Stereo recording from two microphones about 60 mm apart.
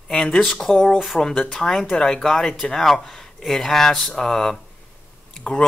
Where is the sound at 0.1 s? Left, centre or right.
Centre.